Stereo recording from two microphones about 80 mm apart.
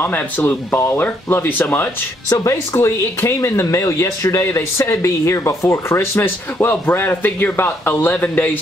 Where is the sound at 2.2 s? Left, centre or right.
Left.